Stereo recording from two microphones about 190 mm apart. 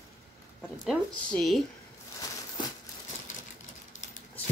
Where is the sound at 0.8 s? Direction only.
Centre (ahead or behind).